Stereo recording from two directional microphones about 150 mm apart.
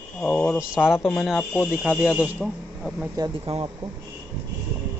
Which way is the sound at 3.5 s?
40° right (ahead or behind).